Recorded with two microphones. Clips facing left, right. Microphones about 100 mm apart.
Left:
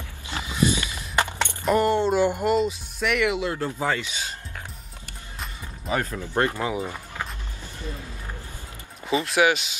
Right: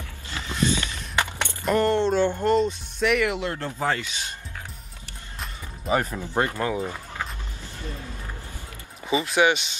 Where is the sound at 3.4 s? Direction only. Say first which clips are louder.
Left 2 dB; 10° left (ahead or behind).